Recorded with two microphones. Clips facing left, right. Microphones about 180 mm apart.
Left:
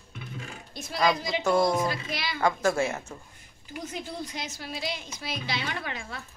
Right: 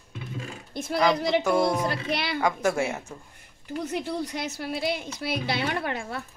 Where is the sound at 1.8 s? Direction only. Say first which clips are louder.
Right 3 dB; 60° right (ahead or behind).